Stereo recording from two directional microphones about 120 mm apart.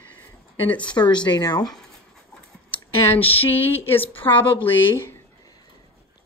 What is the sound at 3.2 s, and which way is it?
Speech, 55° left (ahead or behind).